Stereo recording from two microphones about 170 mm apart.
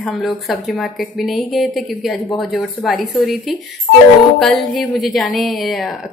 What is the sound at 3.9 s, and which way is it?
Speech, 55° left (ahead or behind).